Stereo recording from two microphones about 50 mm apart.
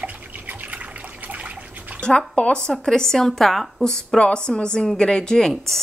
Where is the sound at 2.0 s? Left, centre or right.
Centre.